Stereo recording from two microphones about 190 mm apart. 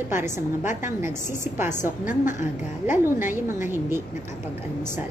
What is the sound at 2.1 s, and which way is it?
Speech, 40° left (ahead or behind).